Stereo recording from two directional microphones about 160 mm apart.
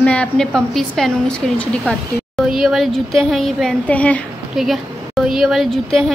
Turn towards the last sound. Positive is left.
turn(degrees=5)  # may be behind; listen again after turning